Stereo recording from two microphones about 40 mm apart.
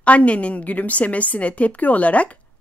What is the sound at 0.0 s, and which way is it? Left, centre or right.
Speech, left.